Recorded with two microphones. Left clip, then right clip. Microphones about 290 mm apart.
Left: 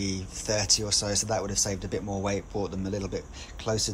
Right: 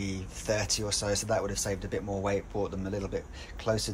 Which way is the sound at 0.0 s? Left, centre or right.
Centre.